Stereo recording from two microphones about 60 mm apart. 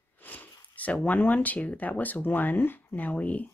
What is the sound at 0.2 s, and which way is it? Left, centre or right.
Speech, left.